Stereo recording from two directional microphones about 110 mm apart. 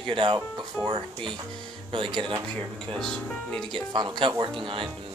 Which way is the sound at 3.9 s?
45° right (ahead or behind).